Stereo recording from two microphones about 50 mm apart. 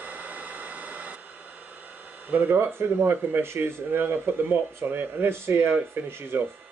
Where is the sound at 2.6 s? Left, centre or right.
Right.